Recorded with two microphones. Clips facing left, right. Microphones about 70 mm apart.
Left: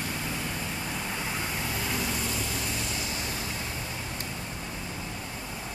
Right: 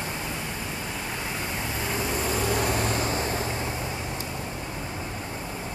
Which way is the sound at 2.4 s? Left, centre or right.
Right.